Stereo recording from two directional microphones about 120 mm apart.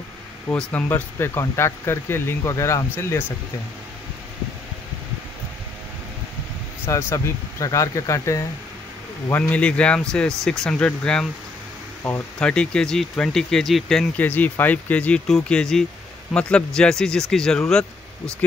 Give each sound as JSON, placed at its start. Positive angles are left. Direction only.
{"t": 0.6, "sound": "speech", "side_deg": 15}
{"t": 6.9, "sound": "speech", "side_deg": 25}
{"t": 9.3, "sound": "speech", "side_deg": 10}
{"t": 14.2, "sound": "speech", "side_deg": 15}